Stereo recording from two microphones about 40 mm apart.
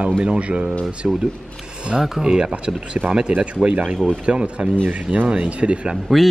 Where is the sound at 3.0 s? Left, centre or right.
Right.